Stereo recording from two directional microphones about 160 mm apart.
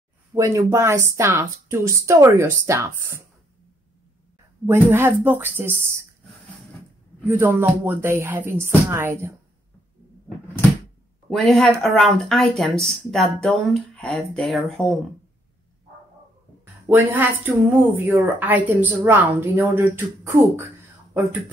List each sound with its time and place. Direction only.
0.3 s speech: 20° right (ahead or behind)
4.6 s speech: 15° right (ahead or behind)
7.2 s speech: 15° right (ahead or behind)
11.2 s speech: centre (ahead or behind)
16.9 s speech: 10° right (ahead or behind)